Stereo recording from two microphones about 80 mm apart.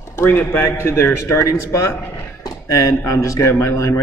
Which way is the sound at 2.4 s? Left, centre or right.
Left.